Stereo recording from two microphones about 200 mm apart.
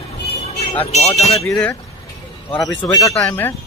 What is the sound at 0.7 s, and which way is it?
Speech, 30° left (ahead or behind).